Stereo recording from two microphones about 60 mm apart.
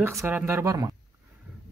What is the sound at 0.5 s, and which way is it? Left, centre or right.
Speech, right.